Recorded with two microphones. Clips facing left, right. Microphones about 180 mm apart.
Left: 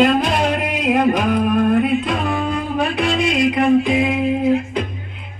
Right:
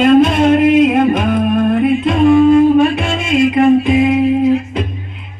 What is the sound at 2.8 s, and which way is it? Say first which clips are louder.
Music: right 5 dB; 25° right (ahead or behind).